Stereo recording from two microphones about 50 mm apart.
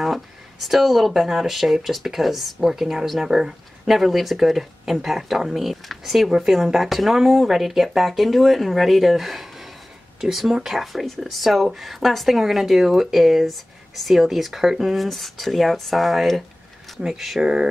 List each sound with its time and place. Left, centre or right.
0.0 s speech: centre